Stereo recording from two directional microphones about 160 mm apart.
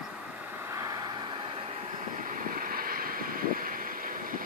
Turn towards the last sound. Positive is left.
turn(degrees=-65)  # may be behind; listen again after turning